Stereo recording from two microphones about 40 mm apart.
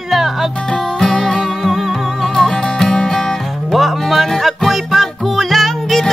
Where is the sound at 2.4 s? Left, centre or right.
Centre.